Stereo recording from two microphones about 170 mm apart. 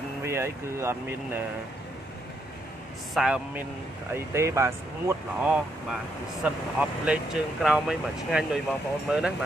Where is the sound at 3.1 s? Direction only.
5° right (ahead or behind).